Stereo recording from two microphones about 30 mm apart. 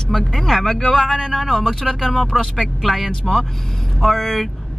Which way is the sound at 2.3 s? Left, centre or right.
Right.